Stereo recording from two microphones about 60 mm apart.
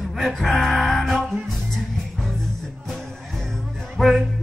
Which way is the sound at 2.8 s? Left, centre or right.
Centre.